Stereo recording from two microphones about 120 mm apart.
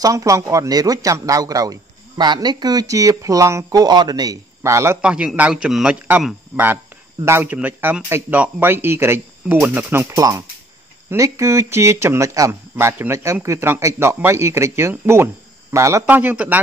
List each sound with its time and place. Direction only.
0.0 s a man's voice: 25° right (ahead or behind)
5.0 s speech: 10° right (ahead or behind)
10.1 s a man's voice: 30° right (ahead or behind)